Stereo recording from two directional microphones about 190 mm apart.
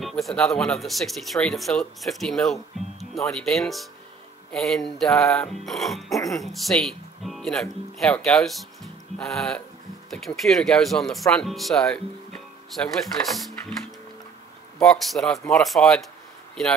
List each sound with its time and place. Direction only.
0.0 s speech: centre (ahead or behind)
6.1 s speech: 15° left (ahead or behind)
6.4 s speech: centre (ahead or behind)
14.8 s speech: centre (ahead or behind)
15.3 s speech: 15° left (ahead or behind)
15.6 s speech: centre (ahead or behind)